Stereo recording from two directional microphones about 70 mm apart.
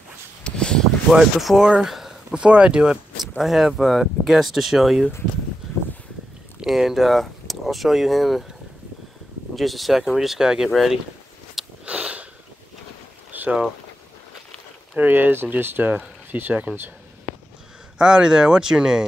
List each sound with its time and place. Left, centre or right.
0.4 s a sound: centre
1.1 s speech: centre
1.8 s a sound: centre
2.3 s speech: centre
3.3 s speech: centre
6.6 s speech: centre
9.6 s speech: centre
11.8 s sniff: centre
13.3 s a sound: right
15.0 s speech: right
17.9 s speech: centre